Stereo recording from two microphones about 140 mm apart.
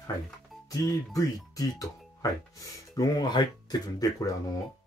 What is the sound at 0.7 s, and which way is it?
Speech, 25° left (ahead or behind).